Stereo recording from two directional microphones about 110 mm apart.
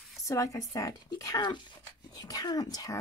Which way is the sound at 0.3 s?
30° left (ahead or behind).